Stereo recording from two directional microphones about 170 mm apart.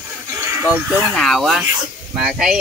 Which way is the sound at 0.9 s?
Centre (ahead or behind).